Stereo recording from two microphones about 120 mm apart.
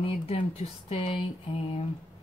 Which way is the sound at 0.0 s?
55° left (ahead or behind).